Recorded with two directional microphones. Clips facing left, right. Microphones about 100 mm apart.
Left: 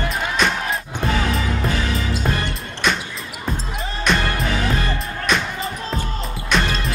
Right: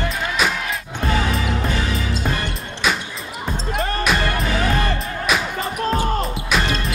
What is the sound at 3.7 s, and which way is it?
Music, 60° right (ahead or behind).